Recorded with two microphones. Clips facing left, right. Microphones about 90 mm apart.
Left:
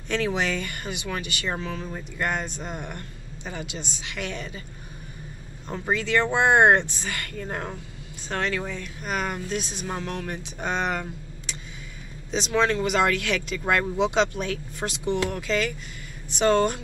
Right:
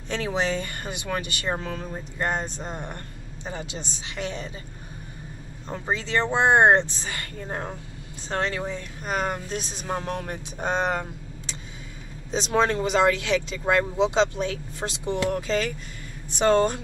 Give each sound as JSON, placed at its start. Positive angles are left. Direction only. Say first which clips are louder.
{"t": 0.1, "sound": "speech", "louder": "even", "side_deg": -30}
{"t": 5.7, "sound": "speech", "louder": "left 2 dB", "side_deg": -25}